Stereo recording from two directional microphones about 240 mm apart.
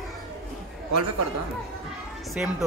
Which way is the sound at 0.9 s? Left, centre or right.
Right.